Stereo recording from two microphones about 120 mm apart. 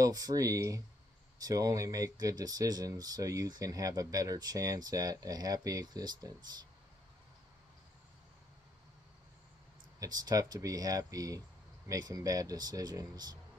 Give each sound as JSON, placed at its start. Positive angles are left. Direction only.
{"t": 0.0, "sound": "speech", "side_deg": -30}
{"t": 9.9, "sound": "speech", "side_deg": -30}